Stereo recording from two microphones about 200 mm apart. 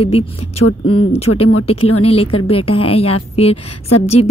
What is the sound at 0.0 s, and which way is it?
Speech, 30° left (ahead or behind).